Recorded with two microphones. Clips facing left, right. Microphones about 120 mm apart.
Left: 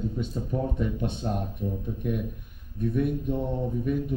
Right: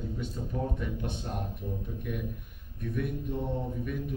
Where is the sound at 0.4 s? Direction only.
30° left (ahead or behind).